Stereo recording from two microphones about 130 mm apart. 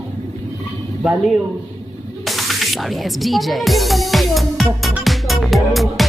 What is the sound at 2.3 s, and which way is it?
Music, centre (ahead or behind).